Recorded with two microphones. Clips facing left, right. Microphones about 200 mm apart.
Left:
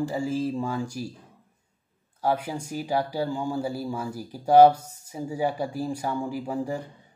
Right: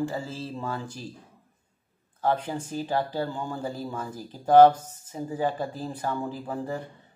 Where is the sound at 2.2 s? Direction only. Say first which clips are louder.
Even; 10° left (ahead or behind).